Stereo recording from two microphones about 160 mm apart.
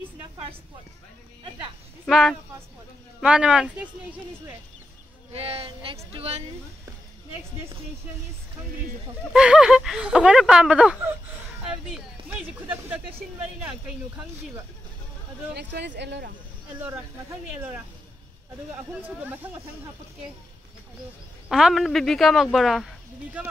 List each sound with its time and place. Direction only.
2.0 s speech: centre (ahead or behind)
5.3 s speech: 40° right (ahead or behind)
9.3 s speech: 5° right (ahead or behind)
15.5 s speech: 90° right
18.9 s speech: 10° right (ahead or behind)
21.5 s speech: 5° right (ahead or behind)